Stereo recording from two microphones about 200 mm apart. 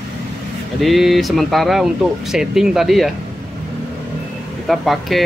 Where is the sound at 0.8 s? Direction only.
Centre (ahead or behind).